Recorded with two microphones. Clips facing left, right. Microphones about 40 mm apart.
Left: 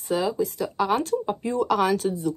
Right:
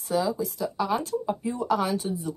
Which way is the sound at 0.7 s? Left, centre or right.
Left.